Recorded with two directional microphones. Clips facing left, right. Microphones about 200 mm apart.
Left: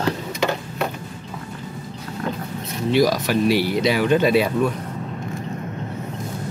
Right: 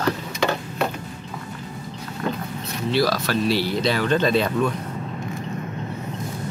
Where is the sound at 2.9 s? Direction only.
15° left (ahead or behind).